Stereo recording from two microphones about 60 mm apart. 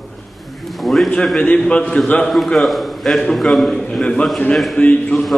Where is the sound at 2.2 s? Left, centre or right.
Centre.